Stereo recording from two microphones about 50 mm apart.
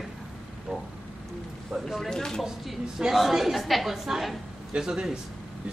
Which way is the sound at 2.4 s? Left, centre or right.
Centre.